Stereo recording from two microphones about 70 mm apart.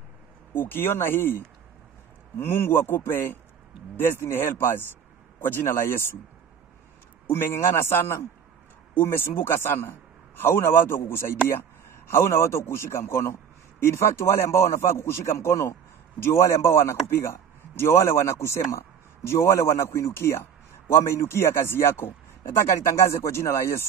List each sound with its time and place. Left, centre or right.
0.6 s a man's voice: left
7.2 s a man's voice: left